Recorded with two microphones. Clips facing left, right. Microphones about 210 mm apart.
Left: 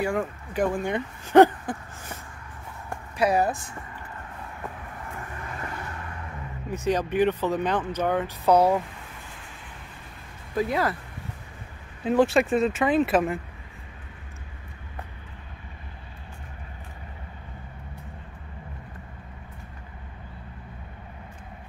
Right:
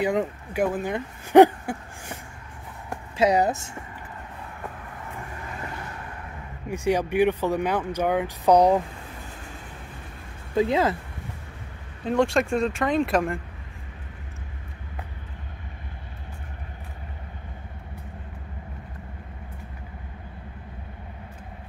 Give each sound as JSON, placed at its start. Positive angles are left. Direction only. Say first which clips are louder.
{"t": 0.0, "sound": "speech", "louder": "right 3 dB", "side_deg": -20}
{"t": 0.6, "sound": "speech", "louder": "even", "side_deg": -5}
{"t": 1.2, "sound": "a sound", "louder": "right 2 dB", "side_deg": -15}
{"t": 3.2, "sound": "speech", "louder": "right 2 dB", "side_deg": -20}
{"t": 6.7, "sound": "speech", "louder": "right 2 dB", "side_deg": -15}
{"t": 10.5, "sound": "speech", "louder": "right 4 dB", "side_deg": -25}
{"t": 12.0, "sound": "speech", "louder": "left 1 dB", "side_deg": 5}